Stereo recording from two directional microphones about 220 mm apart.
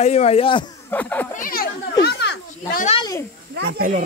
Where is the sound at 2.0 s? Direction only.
45° left (ahead or behind).